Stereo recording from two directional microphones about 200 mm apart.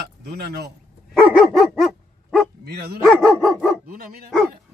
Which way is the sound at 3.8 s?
45° right (ahead or behind).